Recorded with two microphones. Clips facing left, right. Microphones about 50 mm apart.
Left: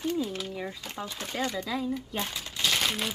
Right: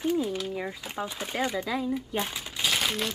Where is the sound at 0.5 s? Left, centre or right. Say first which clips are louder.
Right 3 dB; centre.